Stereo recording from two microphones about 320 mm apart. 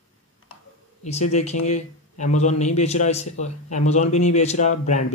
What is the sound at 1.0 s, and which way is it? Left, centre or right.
Speech, left.